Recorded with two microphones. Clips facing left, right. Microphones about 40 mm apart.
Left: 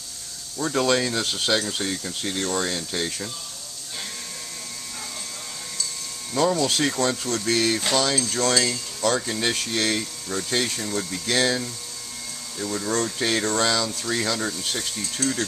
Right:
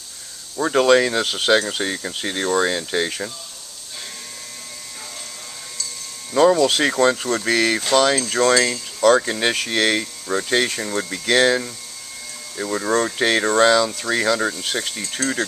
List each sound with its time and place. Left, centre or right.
0.6 s speech: right
6.3 s speech: right
12.5 s speech: right
15.2 s speech: centre